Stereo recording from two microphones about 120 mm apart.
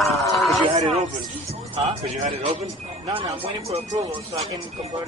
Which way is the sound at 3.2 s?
50° right (ahead or behind).